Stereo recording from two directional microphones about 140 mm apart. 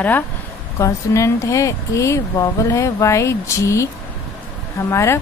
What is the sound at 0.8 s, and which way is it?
Speech, 20° left (ahead or behind).